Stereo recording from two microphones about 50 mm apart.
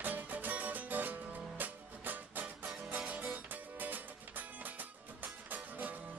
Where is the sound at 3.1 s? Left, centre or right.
Right.